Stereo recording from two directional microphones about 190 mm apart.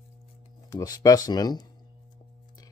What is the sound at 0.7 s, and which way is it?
Speech, 20° left (ahead or behind).